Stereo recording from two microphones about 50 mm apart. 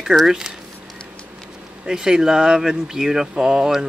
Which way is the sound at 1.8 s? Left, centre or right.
Centre.